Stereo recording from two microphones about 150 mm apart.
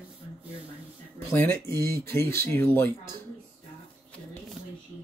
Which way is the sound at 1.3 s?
15° left (ahead or behind).